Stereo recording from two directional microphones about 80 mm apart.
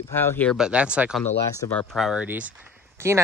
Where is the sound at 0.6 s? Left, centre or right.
Centre.